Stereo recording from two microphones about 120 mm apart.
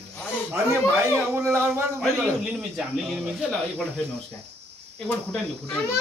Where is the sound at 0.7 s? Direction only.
10° left (ahead or behind).